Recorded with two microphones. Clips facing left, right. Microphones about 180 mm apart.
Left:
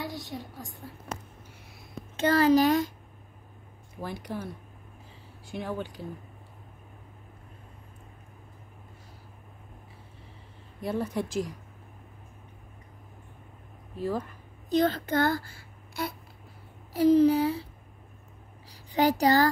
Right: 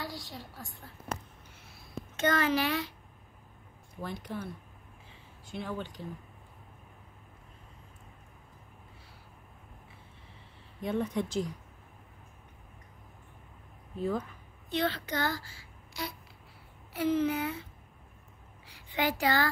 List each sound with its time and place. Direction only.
0.0 s a woman's voice: 20° left (ahead or behind)
2.1 s a child's voice: 35° left (ahead or behind)
4.0 s speech: 10° left (ahead or behind)
5.5 s speech: 10° left (ahead or behind)
10.8 s speech: 5° left (ahead or behind)
13.9 s speech: 5° left (ahead or behind)
14.7 s a child's voice: 45° left (ahead or behind)
16.9 s a child's voice: 35° left (ahead or behind)
18.7 s a child's voice: 40° left (ahead or behind)